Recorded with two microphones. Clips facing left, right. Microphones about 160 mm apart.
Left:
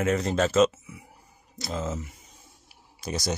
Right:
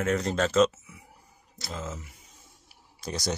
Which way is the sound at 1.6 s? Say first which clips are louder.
Left 6 dB; 20° left (ahead or behind).